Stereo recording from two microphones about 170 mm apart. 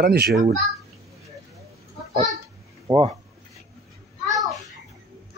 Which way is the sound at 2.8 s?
25° right (ahead or behind).